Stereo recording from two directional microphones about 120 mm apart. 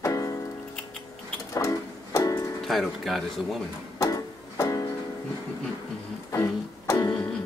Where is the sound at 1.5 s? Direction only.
30° left (ahead or behind).